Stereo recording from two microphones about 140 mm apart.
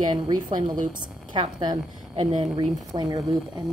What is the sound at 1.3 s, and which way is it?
Speech, 30° right (ahead or behind).